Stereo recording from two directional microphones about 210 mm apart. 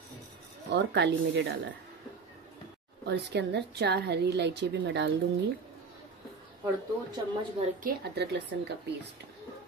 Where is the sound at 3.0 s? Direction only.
55° right (ahead or behind).